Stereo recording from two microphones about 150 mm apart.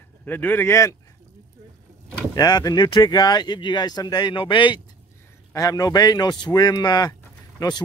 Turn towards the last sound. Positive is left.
turn(degrees=25)  # may be behind; listen again after turning